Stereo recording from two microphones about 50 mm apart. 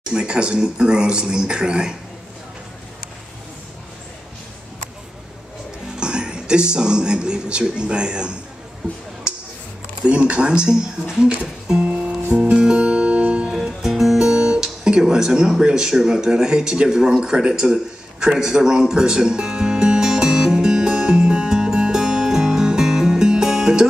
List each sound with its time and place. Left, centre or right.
0.1 s speech: centre
5.9 s speech: centre
9.3 s a sound: centre
10.0 s speech: right
12.4 s music: centre
13.6 s speech: centre
18.2 s music: centre